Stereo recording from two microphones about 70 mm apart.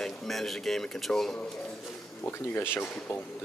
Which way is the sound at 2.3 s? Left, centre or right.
Left.